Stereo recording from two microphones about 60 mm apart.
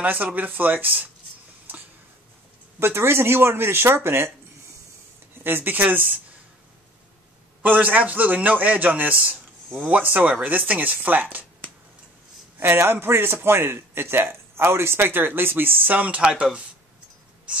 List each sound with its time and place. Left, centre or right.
0.0 s a man's voice: right
2.8 s a man's voice: right
5.4 s a man's voice: right
7.6 s a man's voice: right
12.5 s a man's voice: right
16.2 s speech: centre